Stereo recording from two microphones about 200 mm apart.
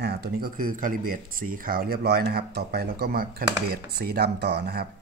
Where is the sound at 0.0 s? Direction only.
50° right (ahead or behind).